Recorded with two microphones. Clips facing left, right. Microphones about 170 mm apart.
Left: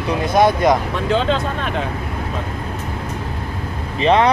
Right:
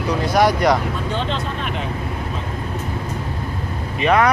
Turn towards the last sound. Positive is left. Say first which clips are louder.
# left 2 dB
turn(degrees=25)  # may be behind; listen again after turning